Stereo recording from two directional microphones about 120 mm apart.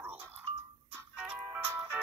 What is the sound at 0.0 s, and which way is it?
Music, 15° right (ahead or behind).